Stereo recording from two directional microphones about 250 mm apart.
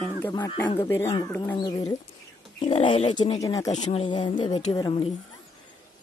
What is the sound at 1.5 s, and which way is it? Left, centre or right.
Speech, centre.